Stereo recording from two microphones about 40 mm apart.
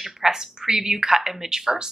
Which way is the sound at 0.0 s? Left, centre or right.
Centre.